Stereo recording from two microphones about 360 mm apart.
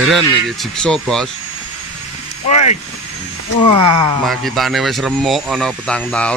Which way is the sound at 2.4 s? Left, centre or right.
Centre.